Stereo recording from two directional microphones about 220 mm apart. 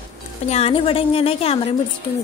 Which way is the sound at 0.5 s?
30° left (ahead or behind).